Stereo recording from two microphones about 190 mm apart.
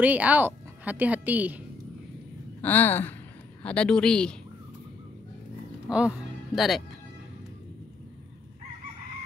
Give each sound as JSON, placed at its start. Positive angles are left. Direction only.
{"t": 0.0, "sound": "a woman's voice", "side_deg": -10}
{"t": 2.6, "sound": "gasp", "side_deg": 10}
{"t": 3.6, "sound": "speech", "side_deg": 5}
{"t": 5.9, "sound": "speech", "side_deg": -5}